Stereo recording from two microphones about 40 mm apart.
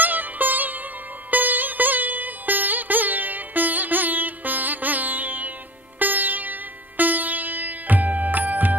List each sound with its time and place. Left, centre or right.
0.0 s music: right